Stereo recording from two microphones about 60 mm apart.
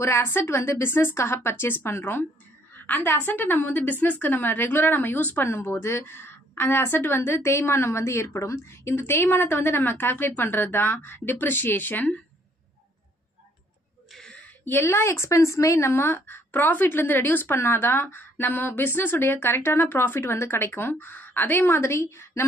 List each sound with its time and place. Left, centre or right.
0.0 s a woman's voice: left
0.4 s a woman's voice: left
5.4 s a woman's voice: left
14.6 s a woman's voice: left